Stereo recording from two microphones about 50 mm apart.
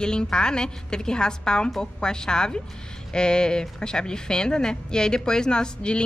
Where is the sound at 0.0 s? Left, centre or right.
Centre.